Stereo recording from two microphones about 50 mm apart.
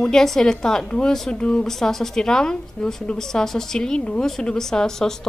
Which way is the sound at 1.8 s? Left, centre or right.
Centre.